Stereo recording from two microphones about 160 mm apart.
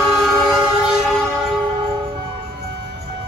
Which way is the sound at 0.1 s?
5° right (ahead or behind).